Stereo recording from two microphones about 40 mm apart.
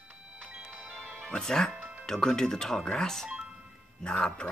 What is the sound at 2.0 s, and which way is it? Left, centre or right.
Speech, centre.